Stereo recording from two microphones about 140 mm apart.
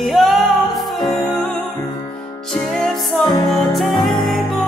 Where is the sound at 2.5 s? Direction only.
5° left (ahead or behind).